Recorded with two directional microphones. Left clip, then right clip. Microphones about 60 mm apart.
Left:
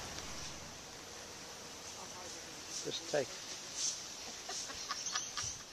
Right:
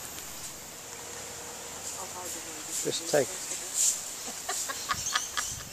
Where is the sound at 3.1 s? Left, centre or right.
Centre.